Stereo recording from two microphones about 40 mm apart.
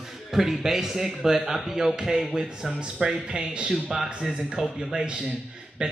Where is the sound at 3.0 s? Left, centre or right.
Right.